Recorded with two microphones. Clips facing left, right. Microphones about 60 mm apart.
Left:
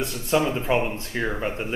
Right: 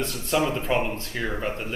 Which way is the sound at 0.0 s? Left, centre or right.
Centre.